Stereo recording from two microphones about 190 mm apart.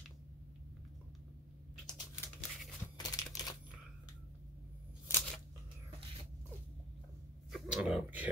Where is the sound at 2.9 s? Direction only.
20° left (ahead or behind).